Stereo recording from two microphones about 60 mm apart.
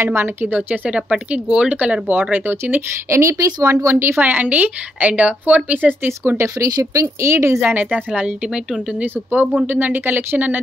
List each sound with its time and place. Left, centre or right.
0.0 s a woman's voice: right; by 2.0 s centre
2.3 s speech: right
3.1 s speech: right
3.8 s speech: right
4.2 s a woman's voice: right
6.4 s speech: right
7.6 s a woman's voice: right
9.0 s speech: right